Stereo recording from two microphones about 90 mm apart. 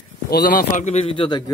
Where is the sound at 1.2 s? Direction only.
60° left (ahead or behind).